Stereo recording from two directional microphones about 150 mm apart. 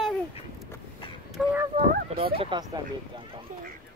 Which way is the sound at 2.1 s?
40° right (ahead or behind).